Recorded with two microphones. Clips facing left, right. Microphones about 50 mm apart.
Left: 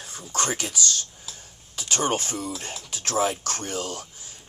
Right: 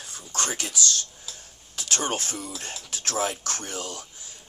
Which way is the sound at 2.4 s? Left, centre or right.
Centre.